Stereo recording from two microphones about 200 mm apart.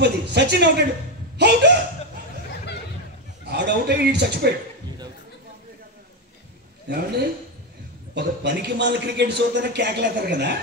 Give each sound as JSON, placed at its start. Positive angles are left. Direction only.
{"t": 0.0, "sound": "a man's voice", "side_deg": -55}
{"t": 3.4, "sound": "a man's voice", "side_deg": -55}
{"t": 6.9, "sound": "a man's voice", "side_deg": -55}